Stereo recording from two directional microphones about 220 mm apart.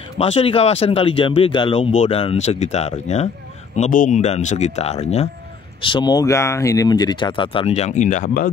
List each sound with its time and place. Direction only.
0.2 s speech: 25° left (ahead or behind)